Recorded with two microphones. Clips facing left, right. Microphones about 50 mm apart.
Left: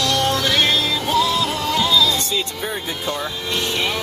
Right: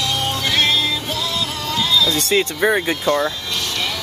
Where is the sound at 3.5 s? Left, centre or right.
Left.